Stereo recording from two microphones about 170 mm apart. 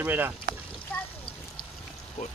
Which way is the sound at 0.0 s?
10° right (ahead or behind).